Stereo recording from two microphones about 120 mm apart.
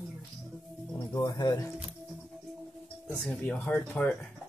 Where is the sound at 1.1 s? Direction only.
35° left (ahead or behind).